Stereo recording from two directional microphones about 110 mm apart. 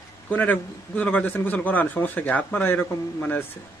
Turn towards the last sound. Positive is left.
turn(degrees=15)  # may be behind; listen again after turning